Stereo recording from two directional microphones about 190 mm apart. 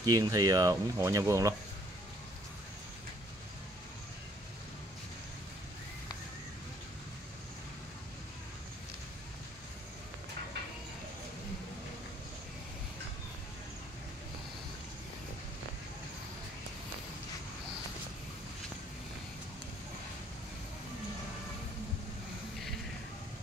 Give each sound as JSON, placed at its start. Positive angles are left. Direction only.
{"t": 0.0, "sound": "speech", "side_deg": -20}